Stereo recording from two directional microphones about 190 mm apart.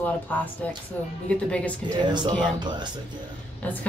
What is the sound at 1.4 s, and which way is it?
Speech, 5° left (ahead or behind).